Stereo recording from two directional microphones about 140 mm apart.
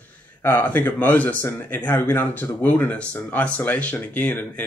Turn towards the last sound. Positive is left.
turn(degrees=10)  # may be behind; listen again after turning